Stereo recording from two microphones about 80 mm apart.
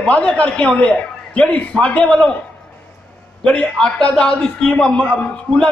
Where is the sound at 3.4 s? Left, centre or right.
Centre.